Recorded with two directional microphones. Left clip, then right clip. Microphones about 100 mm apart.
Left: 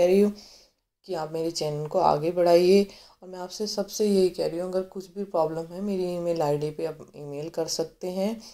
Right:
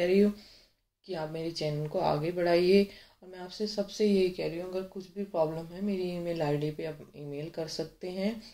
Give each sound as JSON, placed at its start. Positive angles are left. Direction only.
{"t": 0.0, "sound": "speech", "side_deg": 25}